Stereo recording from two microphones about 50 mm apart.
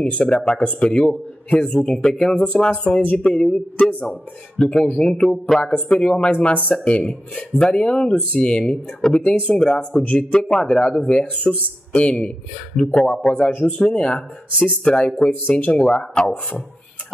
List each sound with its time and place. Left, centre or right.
0.0 s speech: left
13.7 s speech: centre